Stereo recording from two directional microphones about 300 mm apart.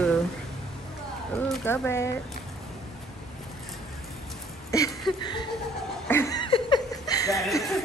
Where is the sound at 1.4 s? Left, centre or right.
Centre.